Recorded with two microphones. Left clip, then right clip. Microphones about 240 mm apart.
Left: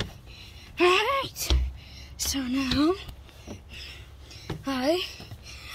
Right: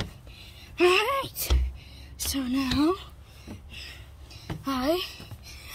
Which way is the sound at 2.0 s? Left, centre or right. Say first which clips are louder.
Left 1 dB; centre.